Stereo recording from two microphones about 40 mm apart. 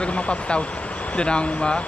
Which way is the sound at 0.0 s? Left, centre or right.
Left.